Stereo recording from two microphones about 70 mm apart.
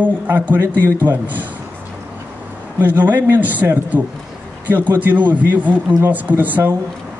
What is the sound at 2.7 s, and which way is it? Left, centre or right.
Speech, right.